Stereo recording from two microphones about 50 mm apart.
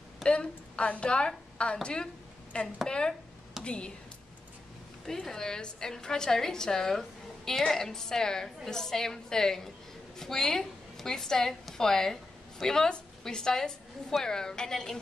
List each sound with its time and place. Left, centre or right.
0.3 s a woman's voice: left
5.0 s a woman's voice: centre